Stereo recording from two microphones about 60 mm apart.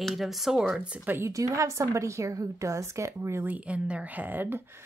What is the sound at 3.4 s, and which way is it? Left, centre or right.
Speech, right.